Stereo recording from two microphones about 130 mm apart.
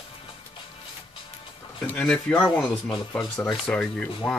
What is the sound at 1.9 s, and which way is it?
Speech, 10° left (ahead or behind).